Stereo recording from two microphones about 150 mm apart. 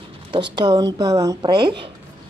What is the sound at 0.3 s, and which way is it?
Speech, 30° right (ahead or behind).